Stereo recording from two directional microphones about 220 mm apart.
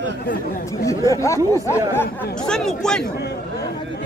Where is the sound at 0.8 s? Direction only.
15° left (ahead or behind).